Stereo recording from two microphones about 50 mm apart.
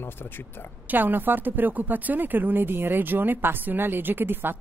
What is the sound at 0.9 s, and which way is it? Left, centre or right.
Speech, right.